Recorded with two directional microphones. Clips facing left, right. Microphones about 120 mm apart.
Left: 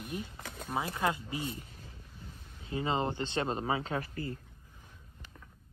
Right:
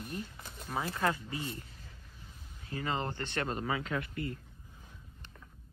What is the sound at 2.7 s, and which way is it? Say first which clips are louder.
Speech: left 4 dB; 20° left (ahead or behind).